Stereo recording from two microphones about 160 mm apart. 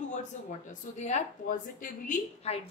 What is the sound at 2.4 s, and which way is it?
Speech, 40° left (ahead or behind).